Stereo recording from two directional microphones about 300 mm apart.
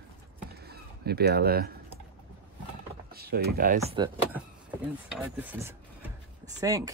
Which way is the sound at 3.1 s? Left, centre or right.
Right.